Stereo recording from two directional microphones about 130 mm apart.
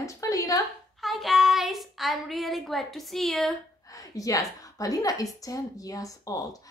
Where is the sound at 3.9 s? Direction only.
25° left (ahead or behind).